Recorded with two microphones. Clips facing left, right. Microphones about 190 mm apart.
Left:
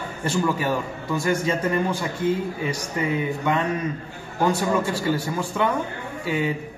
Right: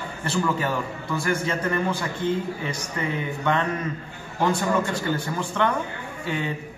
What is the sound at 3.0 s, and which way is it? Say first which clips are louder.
Speech: left 3 dB; 10° left (ahead or behind).